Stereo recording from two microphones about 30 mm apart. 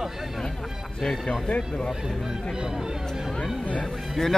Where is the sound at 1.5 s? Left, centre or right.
Left.